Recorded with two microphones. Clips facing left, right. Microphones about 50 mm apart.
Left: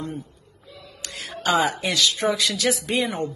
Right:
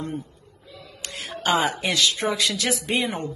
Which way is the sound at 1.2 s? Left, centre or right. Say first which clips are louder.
Left 1 dB; right.